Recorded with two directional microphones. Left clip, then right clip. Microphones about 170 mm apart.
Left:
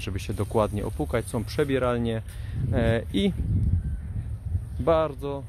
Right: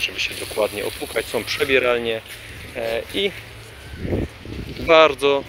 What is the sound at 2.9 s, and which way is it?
Speech, 35° left (ahead or behind).